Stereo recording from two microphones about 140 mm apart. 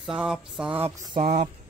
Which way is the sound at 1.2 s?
55° right (ahead or behind).